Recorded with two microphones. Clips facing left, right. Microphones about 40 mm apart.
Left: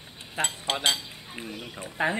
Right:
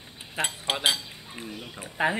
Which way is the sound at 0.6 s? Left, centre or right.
Centre.